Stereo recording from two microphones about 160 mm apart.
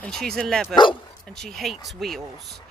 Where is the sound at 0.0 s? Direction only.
5° left (ahead or behind).